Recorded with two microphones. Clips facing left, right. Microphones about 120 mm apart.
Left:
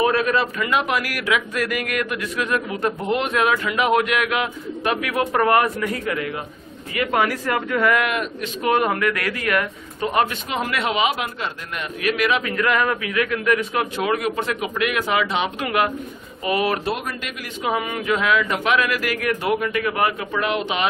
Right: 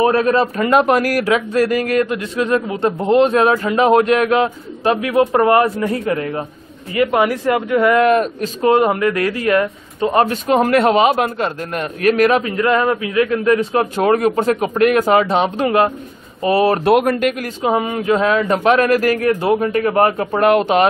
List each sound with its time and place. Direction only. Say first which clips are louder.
0.0 s a man's voice: right 5 dB; 35° right (ahead or behind)
7.0 s a man's voice: right 6 dB; 25° right (ahead or behind)
8.1 s a man's voice: right 10 dB; 40° right (ahead or behind)
8.7 s a man's voice: right 3 dB; 25° right (ahead or behind); by 12.4 s 40° right (ahead or behind)
12.4 s a man's voice: right 5 dB; 30° right (ahead or behind)
13.9 s a man's voice: right 9 dB; 40° right (ahead or behind)
16.8 s a man's voice: right 13 dB; 60° right (ahead or behind)
17.6 s a man's voice: right 3 dB; 30° right (ahead or behind); by 20.9 s 45° right (ahead or behind)